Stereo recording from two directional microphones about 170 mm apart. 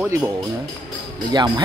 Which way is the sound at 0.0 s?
10° right (ahead or behind).